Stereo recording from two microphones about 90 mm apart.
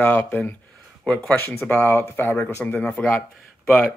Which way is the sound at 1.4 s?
25° left (ahead or behind).